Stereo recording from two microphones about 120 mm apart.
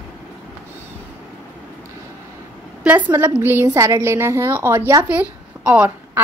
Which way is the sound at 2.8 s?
15° right (ahead or behind).